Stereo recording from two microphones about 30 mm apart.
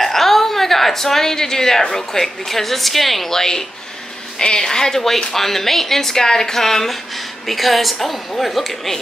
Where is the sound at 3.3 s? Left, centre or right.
Centre.